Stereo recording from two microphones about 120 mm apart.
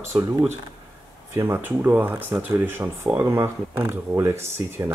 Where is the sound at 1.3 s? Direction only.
20° right (ahead or behind).